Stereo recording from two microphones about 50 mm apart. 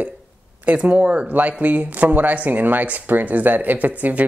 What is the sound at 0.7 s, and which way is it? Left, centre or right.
Speech, right.